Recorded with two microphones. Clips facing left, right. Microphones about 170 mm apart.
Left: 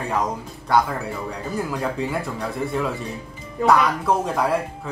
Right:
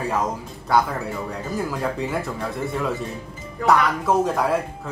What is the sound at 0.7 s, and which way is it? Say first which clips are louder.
Speech: even; centre (ahead or behind).